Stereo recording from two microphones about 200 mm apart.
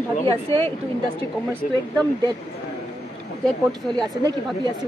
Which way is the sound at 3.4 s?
Centre (ahead or behind).